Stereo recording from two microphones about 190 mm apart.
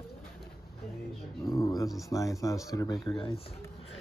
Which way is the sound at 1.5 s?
20° left (ahead or behind).